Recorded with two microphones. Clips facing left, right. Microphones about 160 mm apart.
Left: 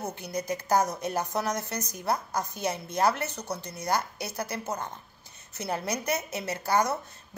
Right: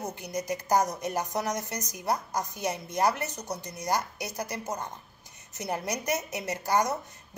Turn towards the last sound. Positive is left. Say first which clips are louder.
# even
turn(degrees=-15)  # may be behind; listen again after turning